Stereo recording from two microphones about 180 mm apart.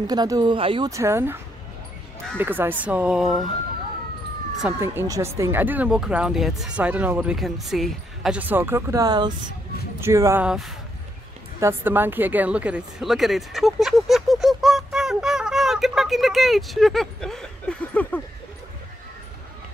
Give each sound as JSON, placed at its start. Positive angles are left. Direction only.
{"t": 0.0, "sound": "speech", "side_deg": -20}
{"t": 0.8, "sound": "speech", "side_deg": -15}
{"t": 4.7, "sound": "speech", "side_deg": -15}
{"t": 10.4, "sound": "speech", "side_deg": -5}